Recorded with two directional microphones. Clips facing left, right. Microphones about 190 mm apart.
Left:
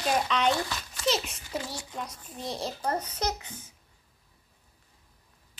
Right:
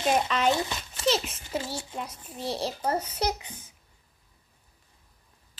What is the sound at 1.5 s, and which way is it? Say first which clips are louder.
A child's voice: right 3 dB; 25° right (ahead or behind).